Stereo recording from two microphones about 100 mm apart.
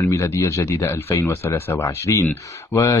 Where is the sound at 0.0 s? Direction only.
30° left (ahead or behind).